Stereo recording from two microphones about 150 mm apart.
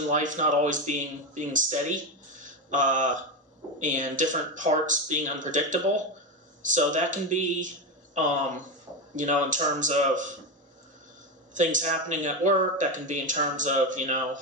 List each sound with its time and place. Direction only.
0.1 s a man's voice: 55° right (ahead or behind)
11.5 s a man's voice: 55° right (ahead or behind)